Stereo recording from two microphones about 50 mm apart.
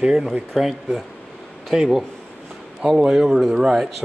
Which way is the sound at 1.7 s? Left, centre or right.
Centre.